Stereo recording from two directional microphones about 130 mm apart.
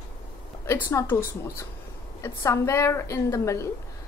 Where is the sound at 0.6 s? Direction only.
25° left (ahead or behind).